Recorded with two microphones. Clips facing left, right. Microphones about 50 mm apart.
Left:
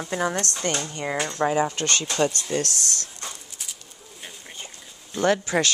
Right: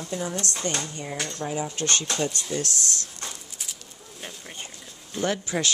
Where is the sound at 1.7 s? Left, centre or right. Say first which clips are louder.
Left 2 dB; left.